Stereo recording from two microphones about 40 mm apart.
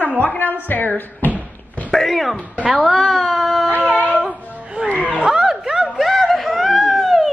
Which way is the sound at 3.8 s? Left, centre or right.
Right.